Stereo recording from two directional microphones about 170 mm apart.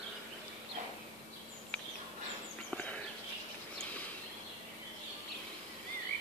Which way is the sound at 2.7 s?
5° left (ahead or behind).